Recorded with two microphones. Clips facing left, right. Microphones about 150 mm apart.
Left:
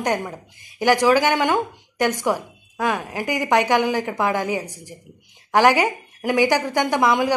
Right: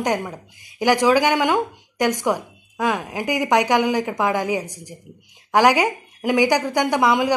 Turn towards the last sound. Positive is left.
turn(degrees=-15)  # may be behind; listen again after turning